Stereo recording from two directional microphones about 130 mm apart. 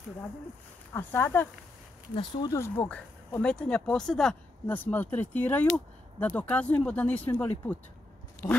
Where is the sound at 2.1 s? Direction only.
40° left (ahead or behind).